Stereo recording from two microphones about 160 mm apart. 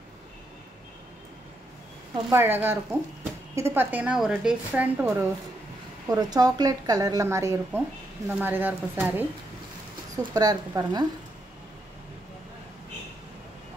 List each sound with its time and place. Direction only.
2.2 s a woman's voice: 15° right (ahead or behind)
6.0 s a woman's voice: 25° right (ahead or behind)
10.1 s a woman's voice: 25° right (ahead or behind)